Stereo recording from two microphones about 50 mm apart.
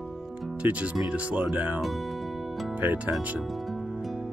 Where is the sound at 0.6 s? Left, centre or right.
Right.